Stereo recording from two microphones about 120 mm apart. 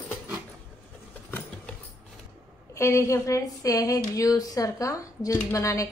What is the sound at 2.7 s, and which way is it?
A woman's voice, 25° left (ahead or behind).